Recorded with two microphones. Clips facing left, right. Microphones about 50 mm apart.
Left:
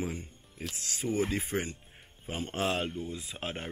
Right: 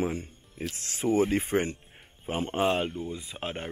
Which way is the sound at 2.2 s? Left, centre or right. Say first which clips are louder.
Right 6 dB; right.